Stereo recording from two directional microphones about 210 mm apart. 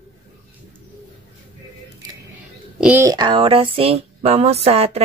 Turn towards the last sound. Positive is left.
turn(degrees=-30)  # may be behind; listen again after turning